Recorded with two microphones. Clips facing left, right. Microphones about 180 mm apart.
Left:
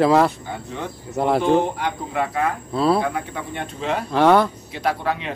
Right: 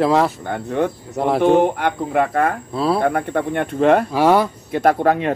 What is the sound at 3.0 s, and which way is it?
Speech, 55° right (ahead or behind).